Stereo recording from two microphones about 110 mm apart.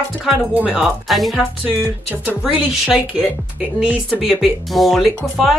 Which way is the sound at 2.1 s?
15° right (ahead or behind).